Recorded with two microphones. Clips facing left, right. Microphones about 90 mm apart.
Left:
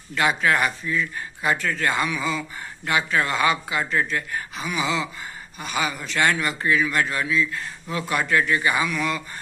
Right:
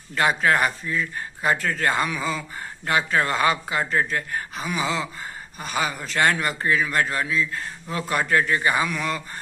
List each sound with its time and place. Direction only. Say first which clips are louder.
0.1 s speech: right 1 dB; 40° right (ahead or behind)